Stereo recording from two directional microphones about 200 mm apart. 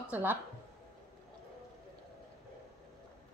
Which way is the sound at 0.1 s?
10° right (ahead or behind).